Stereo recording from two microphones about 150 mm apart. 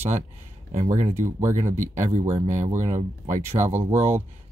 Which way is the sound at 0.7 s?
50° right (ahead or behind).